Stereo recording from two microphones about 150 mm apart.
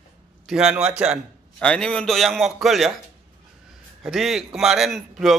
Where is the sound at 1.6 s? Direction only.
5° left (ahead or behind).